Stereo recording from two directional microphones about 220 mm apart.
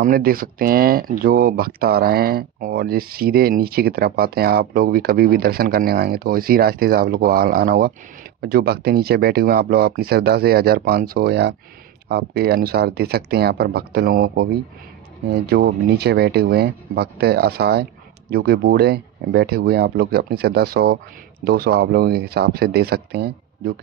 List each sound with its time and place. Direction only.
0.0 s speech: 40° right (ahead or behind)